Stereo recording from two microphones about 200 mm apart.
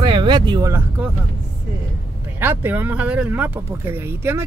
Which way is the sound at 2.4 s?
10° right (ahead or behind).